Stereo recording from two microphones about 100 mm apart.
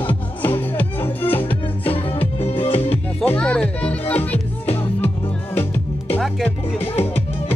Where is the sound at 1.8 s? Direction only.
70° left (ahead or behind).